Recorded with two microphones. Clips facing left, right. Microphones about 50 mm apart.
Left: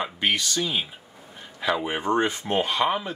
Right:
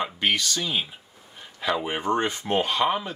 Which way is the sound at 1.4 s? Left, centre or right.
Centre.